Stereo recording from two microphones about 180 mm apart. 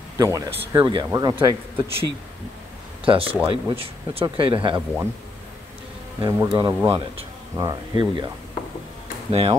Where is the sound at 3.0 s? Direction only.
30° right (ahead or behind).